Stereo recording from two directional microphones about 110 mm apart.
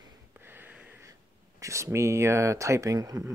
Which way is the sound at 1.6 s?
25° right (ahead or behind).